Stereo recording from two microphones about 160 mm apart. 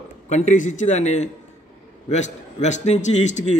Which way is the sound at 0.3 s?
50° left (ahead or behind).